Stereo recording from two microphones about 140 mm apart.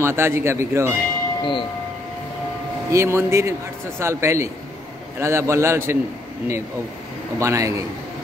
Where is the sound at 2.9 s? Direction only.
20° right (ahead or behind).